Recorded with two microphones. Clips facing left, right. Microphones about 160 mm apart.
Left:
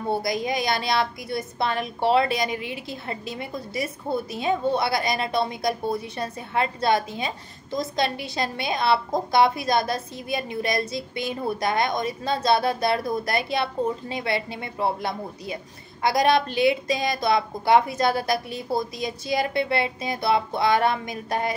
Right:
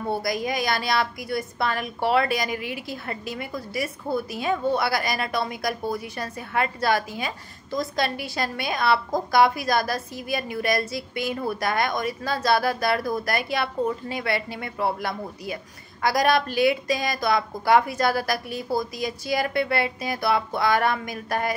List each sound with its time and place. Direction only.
0.1 s a woman's voice: 25° left (ahead or behind)